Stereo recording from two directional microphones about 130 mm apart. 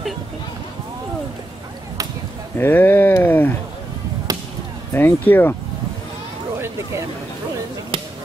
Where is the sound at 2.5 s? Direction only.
15° left (ahead or behind).